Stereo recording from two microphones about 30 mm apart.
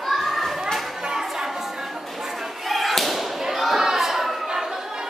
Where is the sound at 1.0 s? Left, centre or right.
Right.